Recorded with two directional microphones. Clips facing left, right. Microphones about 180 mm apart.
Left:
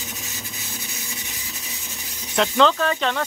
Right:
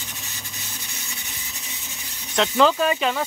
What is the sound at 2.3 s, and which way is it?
Speech, centre (ahead or behind).